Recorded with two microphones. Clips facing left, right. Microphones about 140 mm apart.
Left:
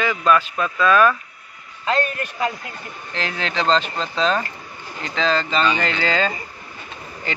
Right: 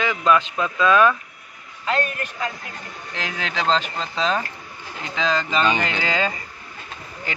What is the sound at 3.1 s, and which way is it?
Speech, 10° right (ahead or behind).